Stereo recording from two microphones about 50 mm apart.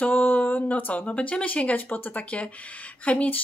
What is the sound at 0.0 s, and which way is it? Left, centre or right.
Speech, left.